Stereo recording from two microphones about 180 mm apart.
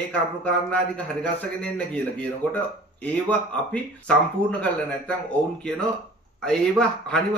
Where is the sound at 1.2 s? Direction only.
10° left (ahead or behind).